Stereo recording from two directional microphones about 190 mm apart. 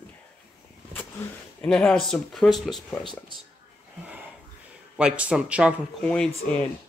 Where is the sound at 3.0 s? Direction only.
25° left (ahead or behind).